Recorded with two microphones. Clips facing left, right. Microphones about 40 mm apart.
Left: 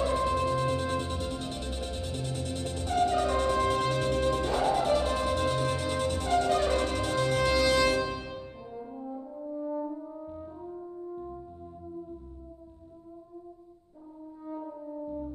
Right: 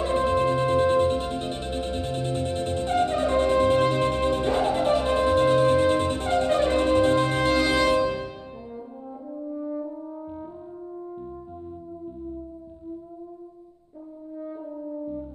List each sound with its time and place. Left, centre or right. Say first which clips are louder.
0.0 s music: right 5 dB; right
8.7 s french horn: right 1 dB; centre
10.2 s french horn: right 4 dB; right